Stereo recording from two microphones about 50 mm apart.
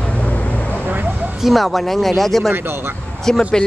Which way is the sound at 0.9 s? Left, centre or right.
Right.